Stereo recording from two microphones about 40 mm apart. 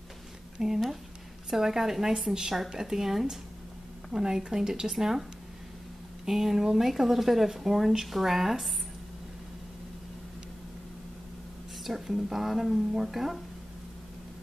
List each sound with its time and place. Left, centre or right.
0.6 s speech: centre
6.2 s speech: centre
11.8 s speech: centre